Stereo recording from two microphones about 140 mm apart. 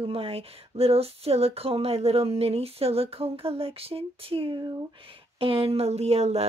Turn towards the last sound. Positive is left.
turn(degrees=-50)  # may be behind; listen again after turning